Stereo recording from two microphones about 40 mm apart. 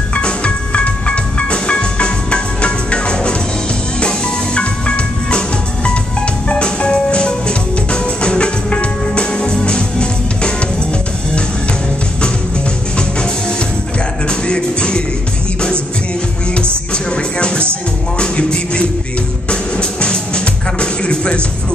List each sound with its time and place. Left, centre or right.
0.1 s music: left
4.6 s music: left
6.5 s music: left
14.5 s music: left
16.9 s music: left